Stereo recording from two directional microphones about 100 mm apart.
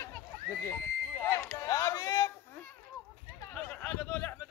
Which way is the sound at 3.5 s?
15° left (ahead or behind).